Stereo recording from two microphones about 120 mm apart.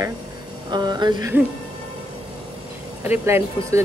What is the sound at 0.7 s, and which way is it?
Speech, 35° right (ahead or behind).